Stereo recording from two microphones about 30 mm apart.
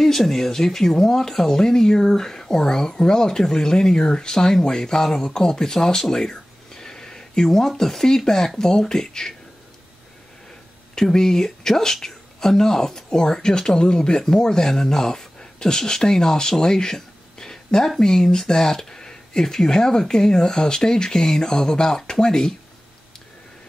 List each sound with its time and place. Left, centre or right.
0.2 s speech: centre
6.3 s a sound: centre
8.5 s speech: left
11.0 s speech: centre